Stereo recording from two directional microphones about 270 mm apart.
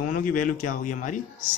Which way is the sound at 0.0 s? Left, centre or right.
Left.